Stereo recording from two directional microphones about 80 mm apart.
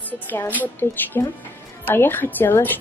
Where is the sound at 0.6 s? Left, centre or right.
Left.